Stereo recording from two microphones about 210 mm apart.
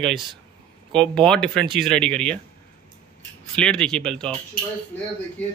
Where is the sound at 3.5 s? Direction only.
5° left (ahead or behind).